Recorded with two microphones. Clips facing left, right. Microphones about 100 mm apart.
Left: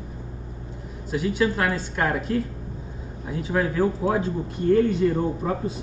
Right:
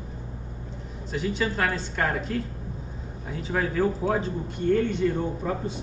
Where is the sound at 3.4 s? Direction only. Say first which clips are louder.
Left 2 dB; 5° left (ahead or behind).